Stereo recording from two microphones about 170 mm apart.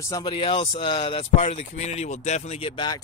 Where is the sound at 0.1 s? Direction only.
25° left (ahead or behind).